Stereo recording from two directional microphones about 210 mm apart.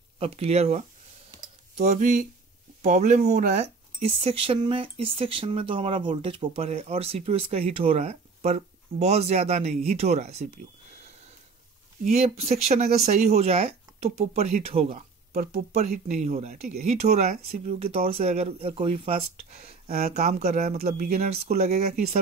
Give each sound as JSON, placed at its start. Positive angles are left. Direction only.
{"t": 0.2, "sound": "speech", "side_deg": -30}
{"t": 12.0, "sound": "speech", "side_deg": -30}
{"t": 17.3, "sound": "speech", "side_deg": -45}
{"t": 17.7, "sound": "speech", "side_deg": -30}